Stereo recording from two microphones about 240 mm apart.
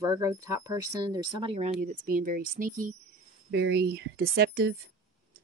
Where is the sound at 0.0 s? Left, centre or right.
Centre.